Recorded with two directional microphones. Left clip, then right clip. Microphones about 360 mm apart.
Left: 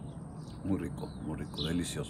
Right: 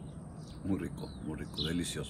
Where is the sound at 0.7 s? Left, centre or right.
Centre.